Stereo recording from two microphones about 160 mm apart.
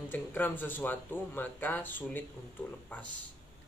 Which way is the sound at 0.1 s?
10° left (ahead or behind).